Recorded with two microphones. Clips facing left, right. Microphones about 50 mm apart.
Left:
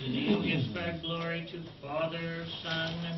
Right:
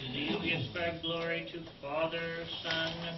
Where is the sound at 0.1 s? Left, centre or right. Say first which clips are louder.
Left 5 dB; centre.